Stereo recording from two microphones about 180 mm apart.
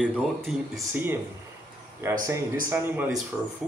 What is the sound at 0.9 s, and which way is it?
Speech, 10° right (ahead or behind).